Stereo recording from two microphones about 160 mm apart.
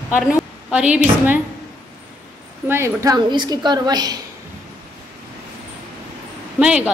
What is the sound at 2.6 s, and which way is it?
A woman's voice, 15° right (ahead or behind).